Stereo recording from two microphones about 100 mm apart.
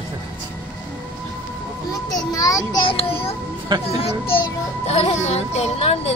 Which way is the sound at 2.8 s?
70° left (ahead or behind).